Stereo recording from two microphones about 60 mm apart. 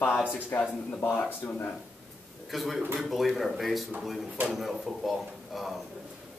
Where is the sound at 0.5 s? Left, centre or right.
Left.